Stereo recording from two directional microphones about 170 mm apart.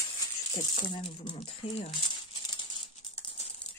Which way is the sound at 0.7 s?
30° left (ahead or behind).